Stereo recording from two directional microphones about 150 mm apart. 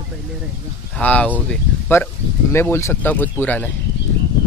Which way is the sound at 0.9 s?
10° left (ahead or behind).